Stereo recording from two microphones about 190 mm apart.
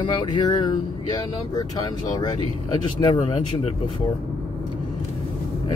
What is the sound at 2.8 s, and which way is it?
Speech, 25° left (ahead or behind).